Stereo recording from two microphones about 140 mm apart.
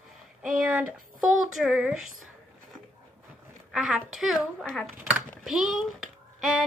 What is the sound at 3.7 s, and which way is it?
Speech, 5° right (ahead or behind).